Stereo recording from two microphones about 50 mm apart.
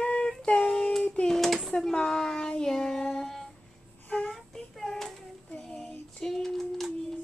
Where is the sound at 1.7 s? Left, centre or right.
Centre.